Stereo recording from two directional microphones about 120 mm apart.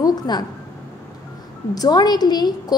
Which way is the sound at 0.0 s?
35° left (ahead or behind).